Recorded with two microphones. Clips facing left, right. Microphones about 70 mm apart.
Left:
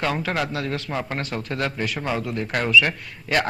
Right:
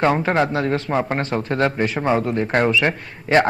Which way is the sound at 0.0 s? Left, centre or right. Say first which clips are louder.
Right 7 dB; right.